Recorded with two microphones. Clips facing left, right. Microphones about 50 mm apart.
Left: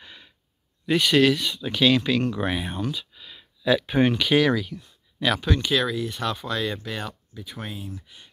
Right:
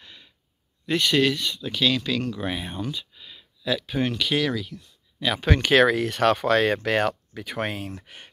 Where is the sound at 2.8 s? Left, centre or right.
Centre.